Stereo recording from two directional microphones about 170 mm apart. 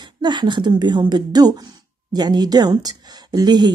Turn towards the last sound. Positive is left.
turn(degrees=-25)  # may be behind; listen again after turning